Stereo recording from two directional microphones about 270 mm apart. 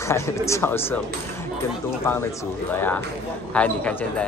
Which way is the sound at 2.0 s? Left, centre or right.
Centre.